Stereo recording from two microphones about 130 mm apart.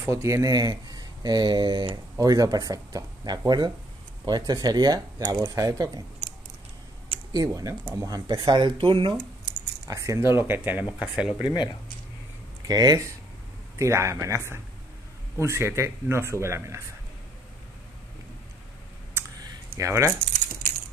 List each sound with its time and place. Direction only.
0.0 s speech: 25° right (ahead or behind)
7.3 s speech: 25° right (ahead or behind)
9.8 s speech: 25° right (ahead or behind); by 11.3 s 5° right (ahead or behind)
11.4 s speech: 35° left (ahead or behind)
12.6 s speech: 30° right (ahead or behind)
19.8 s speech: 20° right (ahead or behind)